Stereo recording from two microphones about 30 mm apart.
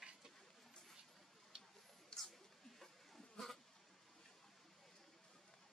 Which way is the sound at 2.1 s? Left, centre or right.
Left.